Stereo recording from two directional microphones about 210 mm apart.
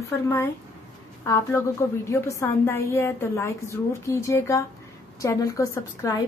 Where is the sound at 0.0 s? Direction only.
15° left (ahead or behind).